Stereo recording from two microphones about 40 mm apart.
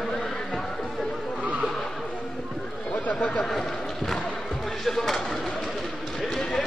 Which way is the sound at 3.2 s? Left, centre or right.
Left.